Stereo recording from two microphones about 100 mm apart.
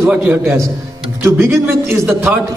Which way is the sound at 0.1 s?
15° right (ahead or behind).